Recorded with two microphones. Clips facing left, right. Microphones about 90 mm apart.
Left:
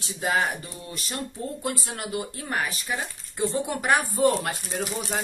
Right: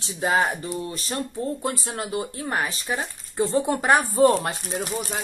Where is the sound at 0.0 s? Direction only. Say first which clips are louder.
Right 3 dB; 30° right (ahead or behind).